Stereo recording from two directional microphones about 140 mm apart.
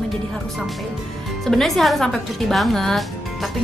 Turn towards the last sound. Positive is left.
turn(degrees=0)  # may be behind; listen again after turning